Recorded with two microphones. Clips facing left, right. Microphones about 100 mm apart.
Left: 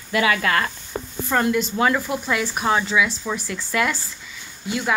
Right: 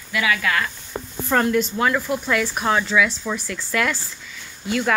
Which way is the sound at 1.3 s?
5° left (ahead or behind).